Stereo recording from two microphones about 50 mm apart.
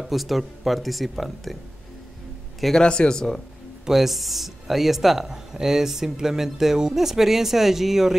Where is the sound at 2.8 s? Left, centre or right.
Centre.